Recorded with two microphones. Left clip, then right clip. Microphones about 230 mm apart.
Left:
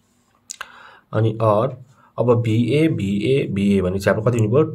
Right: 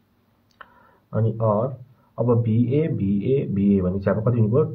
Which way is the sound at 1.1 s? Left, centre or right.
Left.